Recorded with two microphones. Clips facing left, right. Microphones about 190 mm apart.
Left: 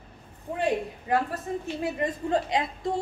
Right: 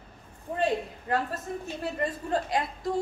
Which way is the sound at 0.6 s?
10° left (ahead or behind).